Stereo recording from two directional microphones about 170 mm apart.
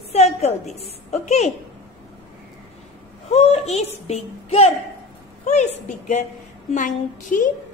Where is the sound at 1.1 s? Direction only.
40° left (ahead or behind).